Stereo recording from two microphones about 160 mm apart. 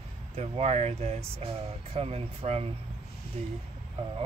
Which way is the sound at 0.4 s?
40° right (ahead or behind).